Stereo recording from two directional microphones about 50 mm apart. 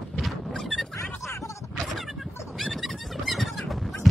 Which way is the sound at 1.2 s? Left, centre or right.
Left.